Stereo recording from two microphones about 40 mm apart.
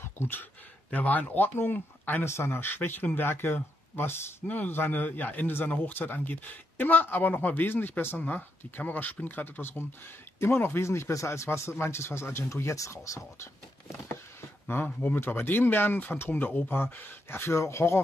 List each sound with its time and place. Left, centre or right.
0.9 s speech: left
2.2 s speech: left
4.5 s speech: left
8.2 s speech: left
11.2 s speech: left
14.7 s speech: left
16.6 s speech: left